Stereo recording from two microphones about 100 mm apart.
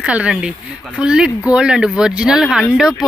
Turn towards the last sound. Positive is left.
turn(degrees=-5)  # may be behind; listen again after turning